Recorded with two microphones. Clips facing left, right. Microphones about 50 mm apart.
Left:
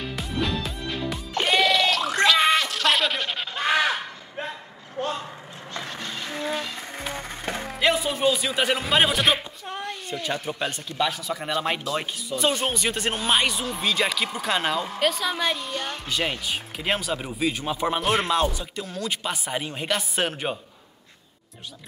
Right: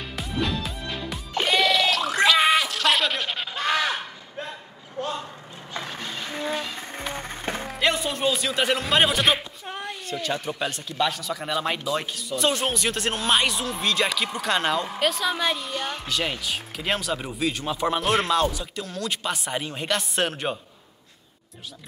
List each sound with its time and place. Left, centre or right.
0.0 s music: centre
3.6 s a sound: centre
6.4 s insect: centre
7.6 s music: centre
10.2 s speech: centre